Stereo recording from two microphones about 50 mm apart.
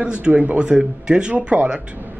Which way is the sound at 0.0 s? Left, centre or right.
Centre.